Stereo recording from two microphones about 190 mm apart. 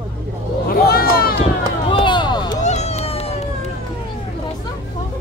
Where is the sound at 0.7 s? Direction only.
50° left (ahead or behind).